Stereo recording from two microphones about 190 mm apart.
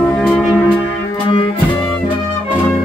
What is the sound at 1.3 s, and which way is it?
Music, 25° left (ahead or behind).